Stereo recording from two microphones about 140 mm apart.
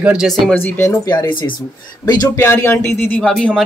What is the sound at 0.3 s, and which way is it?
Speech, 10° left (ahead or behind).